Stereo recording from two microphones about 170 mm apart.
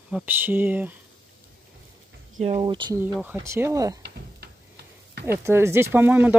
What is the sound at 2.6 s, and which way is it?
Speech, 25° right (ahead or behind).